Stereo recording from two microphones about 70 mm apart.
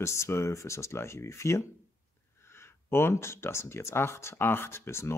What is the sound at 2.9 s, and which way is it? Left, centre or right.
Speech, left.